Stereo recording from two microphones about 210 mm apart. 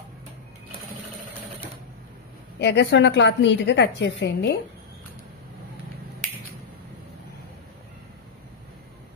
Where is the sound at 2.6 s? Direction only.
55° left (ahead or behind).